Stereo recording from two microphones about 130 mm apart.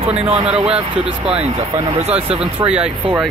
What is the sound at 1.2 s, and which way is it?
Speech, 55° right (ahead or behind).